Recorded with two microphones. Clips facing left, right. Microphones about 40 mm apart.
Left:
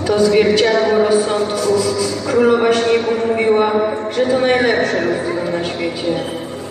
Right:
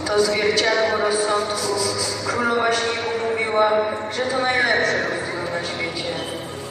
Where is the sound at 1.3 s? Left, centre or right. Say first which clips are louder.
Left 6 dB; left.